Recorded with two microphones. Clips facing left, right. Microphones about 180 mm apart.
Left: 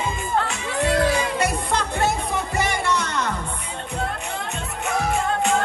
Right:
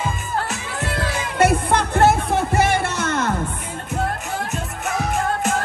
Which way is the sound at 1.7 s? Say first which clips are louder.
Right 6 dB; 65° right (ahead or behind).